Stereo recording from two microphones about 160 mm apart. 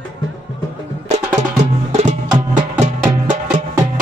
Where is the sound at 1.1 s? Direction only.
45° right (ahead or behind).